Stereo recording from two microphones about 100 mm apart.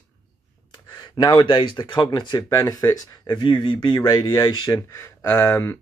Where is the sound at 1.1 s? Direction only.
50° left (ahead or behind).